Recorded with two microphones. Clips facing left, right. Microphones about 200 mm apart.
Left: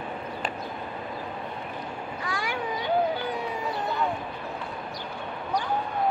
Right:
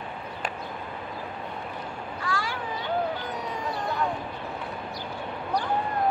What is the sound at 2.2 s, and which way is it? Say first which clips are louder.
Children playing: right 1 dB; 15° left (ahead or behind).